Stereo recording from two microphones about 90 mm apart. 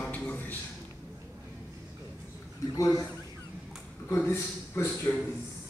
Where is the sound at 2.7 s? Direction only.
45° left (ahead or behind).